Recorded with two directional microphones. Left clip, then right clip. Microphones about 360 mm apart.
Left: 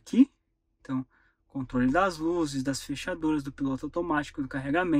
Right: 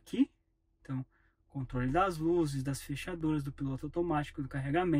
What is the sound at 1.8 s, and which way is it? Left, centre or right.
Speech, centre.